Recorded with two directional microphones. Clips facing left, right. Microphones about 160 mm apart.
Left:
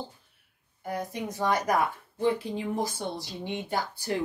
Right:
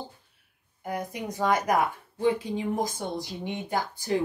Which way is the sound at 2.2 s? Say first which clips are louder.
Right 2 dB; 15° right (ahead or behind).